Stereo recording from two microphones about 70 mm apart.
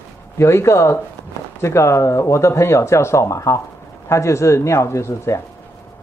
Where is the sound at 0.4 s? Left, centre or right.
Left.